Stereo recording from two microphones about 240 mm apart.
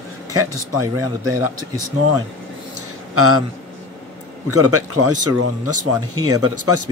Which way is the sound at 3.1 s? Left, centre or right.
Right.